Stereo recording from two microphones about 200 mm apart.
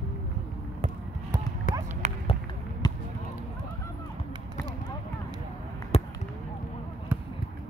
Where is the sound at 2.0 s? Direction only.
35° right (ahead or behind).